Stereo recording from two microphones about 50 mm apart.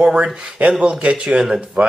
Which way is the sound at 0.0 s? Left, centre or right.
Right.